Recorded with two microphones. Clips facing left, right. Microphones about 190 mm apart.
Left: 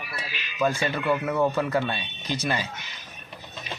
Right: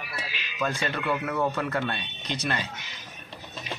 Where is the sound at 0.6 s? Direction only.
Centre (ahead or behind).